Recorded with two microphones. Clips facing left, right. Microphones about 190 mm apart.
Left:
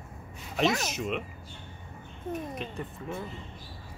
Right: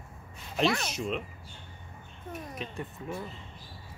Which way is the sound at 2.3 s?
Centre (ahead or behind).